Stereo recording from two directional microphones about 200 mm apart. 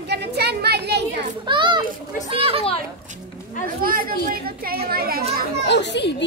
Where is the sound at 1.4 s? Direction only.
25° right (ahead or behind).